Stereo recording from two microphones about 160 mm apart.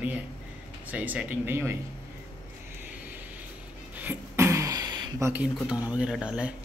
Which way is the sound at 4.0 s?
15° right (ahead or behind).